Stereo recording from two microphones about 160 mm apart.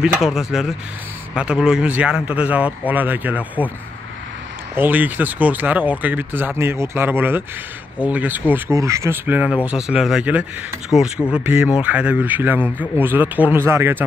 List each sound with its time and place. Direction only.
0.0 s speech: 5° right (ahead or behind)
4.7 s speech: 10° right (ahead or behind)